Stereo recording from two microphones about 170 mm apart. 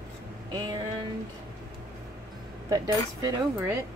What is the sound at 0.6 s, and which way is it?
Speech, 25° right (ahead or behind).